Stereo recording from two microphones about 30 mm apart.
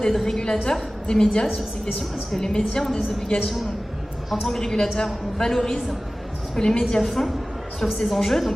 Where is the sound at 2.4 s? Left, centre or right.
Left.